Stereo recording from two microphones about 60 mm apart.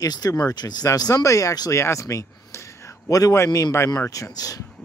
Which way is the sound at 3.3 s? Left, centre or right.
Left.